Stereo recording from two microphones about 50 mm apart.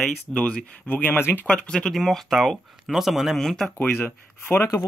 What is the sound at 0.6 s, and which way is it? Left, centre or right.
Speech, left.